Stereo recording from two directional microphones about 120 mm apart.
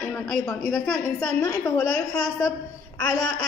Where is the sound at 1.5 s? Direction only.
25° left (ahead or behind).